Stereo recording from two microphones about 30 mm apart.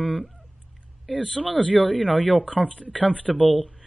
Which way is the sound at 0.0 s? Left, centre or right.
Centre.